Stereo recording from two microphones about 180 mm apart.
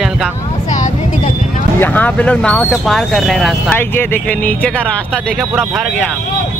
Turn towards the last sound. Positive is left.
turn(degrees=0)  # may be behind; listen again after turning